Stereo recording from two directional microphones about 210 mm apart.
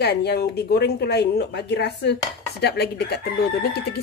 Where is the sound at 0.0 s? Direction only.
50° left (ahead or behind).